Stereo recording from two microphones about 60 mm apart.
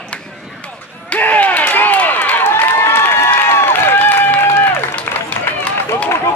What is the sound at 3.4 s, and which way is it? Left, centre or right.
Applause, left.